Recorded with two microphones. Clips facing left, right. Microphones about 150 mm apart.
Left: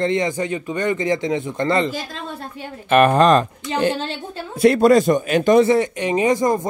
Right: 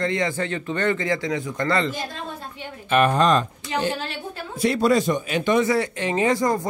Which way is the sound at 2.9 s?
55° left (ahead or behind).